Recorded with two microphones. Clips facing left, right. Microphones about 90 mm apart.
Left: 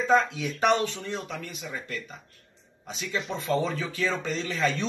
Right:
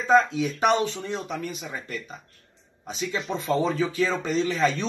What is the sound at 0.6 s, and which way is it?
Speech, 10° right (ahead or behind).